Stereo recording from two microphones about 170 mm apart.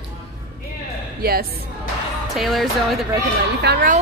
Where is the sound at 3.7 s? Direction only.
75° right (ahead or behind).